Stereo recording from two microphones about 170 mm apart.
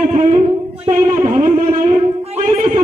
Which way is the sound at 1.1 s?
20° right (ahead or behind).